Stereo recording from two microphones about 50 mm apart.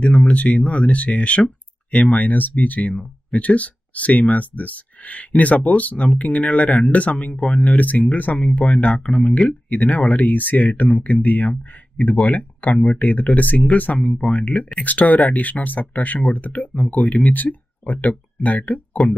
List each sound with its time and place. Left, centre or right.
0.0 s speech: left